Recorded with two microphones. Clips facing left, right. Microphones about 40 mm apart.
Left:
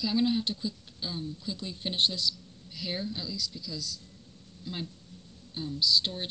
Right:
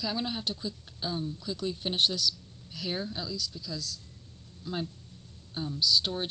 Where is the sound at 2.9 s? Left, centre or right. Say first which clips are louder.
Right 1 dB; centre.